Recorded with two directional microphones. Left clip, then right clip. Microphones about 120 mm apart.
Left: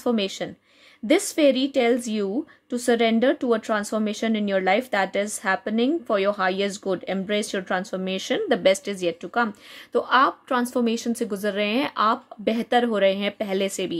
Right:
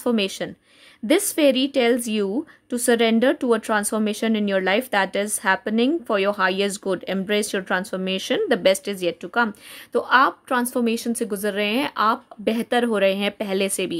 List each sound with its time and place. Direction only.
0.0 s a woman's voice: 35° right (ahead or behind)